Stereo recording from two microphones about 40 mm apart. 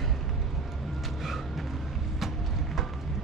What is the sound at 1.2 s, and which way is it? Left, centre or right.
Vehicle, centre.